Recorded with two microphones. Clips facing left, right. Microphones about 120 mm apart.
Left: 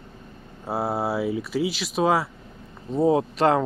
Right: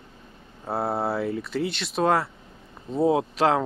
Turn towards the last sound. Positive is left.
turn(degrees=0)  # may be behind; listen again after turning